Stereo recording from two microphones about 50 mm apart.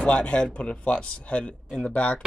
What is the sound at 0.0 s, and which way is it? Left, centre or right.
Speech, left.